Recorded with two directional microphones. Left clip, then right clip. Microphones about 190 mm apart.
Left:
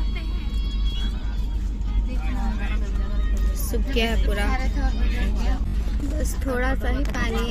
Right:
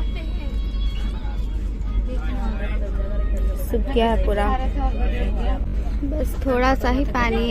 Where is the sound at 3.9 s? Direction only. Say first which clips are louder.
Right 5 dB; 15° right (ahead or behind).